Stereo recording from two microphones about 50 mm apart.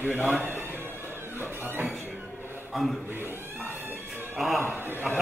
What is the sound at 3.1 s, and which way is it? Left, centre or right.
Speech, right.